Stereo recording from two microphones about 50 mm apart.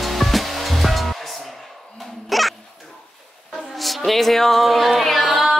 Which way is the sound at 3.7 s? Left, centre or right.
Centre.